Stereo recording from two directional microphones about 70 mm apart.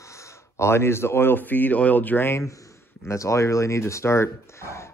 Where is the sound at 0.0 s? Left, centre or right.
Left.